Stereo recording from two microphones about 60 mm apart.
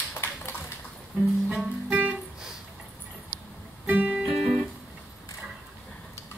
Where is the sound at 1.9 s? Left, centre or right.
Right.